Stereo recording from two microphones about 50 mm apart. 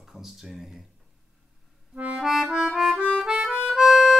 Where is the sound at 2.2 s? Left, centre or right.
Centre.